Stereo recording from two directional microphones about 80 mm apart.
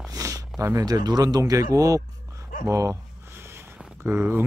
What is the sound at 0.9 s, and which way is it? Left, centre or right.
Speech, right.